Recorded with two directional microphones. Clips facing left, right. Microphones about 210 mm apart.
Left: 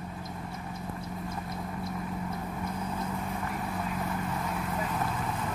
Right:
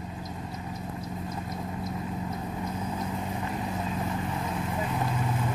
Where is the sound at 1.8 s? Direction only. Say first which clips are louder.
Right 2 dB; 20° right (ahead or behind).